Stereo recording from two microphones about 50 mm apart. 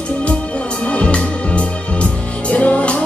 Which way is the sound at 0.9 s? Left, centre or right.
Left.